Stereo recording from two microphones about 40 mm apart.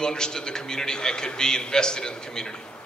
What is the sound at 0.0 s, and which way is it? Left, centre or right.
A man's voice, centre.